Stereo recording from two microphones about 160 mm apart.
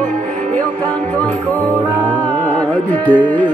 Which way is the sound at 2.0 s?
30° right (ahead or behind).